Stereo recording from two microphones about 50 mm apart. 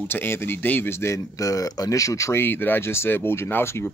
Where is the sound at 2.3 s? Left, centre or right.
Left.